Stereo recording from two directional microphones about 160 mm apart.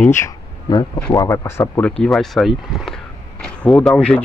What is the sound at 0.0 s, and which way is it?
Speech, 15° left (ahead or behind).